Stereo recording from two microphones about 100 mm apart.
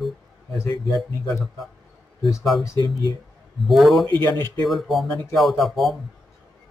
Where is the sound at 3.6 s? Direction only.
Centre (ahead or behind).